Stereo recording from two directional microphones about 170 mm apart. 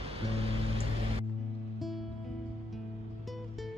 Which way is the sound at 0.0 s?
35° right (ahead or behind).